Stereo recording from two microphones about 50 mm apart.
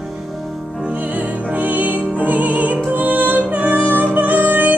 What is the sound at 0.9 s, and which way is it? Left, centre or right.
Music, right.